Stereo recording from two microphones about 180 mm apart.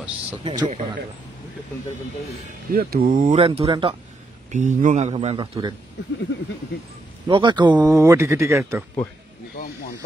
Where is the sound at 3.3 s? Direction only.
35° right (ahead or behind).